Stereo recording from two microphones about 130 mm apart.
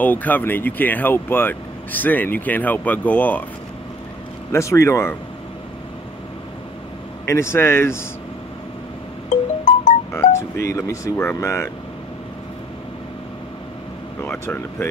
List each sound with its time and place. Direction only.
0.0 s speech: 15° left (ahead or behind)
4.5 s speech: 20° left (ahead or behind)
7.2 s speech: 20° left (ahead or behind)
9.3 s music: 70° left (ahead or behind)
10.7 s speech: 25° left (ahead or behind)
14.2 s speech: 15° left (ahead or behind)